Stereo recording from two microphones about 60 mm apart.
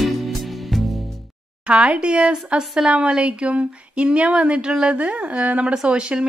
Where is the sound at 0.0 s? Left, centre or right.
Centre.